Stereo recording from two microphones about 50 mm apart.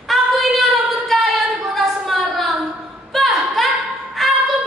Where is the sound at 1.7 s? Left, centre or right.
Centre.